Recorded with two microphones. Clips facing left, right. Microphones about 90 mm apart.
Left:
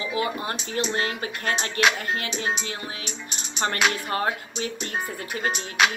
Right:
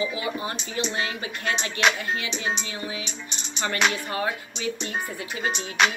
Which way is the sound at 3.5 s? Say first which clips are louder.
Left 2 dB; 45° left (ahead or behind).